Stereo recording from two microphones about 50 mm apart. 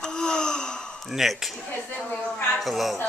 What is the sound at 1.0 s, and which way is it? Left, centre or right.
Speech, centre.